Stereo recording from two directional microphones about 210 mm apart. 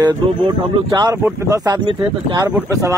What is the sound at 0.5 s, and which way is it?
Speech, 20° right (ahead or behind).